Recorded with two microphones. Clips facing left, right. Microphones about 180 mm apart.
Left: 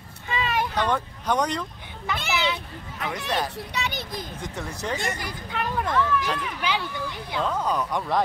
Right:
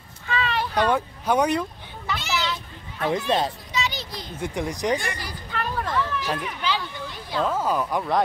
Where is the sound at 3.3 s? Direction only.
25° right (ahead or behind).